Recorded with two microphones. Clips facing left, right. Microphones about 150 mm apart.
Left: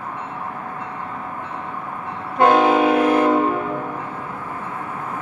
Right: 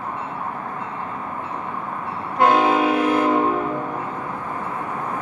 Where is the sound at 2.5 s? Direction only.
50° left (ahead or behind).